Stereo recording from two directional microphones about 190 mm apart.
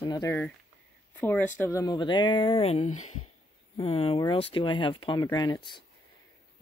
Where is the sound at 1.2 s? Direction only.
10° left (ahead or behind).